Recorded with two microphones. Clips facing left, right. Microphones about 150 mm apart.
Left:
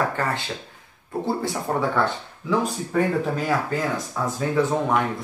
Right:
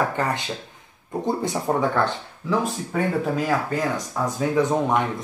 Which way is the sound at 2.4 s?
Centre (ahead or behind).